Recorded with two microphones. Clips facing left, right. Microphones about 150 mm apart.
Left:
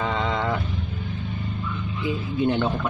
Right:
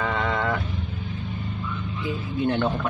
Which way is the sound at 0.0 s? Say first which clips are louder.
Even; 20° left (ahead or behind).